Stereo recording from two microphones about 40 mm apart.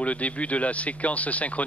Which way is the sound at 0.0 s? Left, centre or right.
Left.